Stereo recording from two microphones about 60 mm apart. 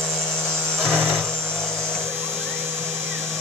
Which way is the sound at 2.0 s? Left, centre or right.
Right.